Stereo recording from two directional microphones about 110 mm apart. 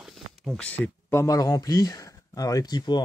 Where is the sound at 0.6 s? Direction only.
15° left (ahead or behind).